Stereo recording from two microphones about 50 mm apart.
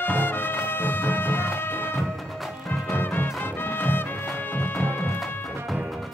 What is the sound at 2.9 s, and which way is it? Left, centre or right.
Music, left.